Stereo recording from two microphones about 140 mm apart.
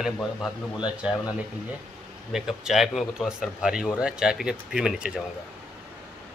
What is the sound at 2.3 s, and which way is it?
Speech, 5° right (ahead or behind).